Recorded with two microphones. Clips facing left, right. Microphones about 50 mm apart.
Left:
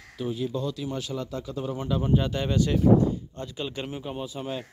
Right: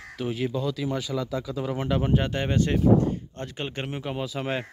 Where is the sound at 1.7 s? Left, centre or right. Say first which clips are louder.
Right 1 dB; right.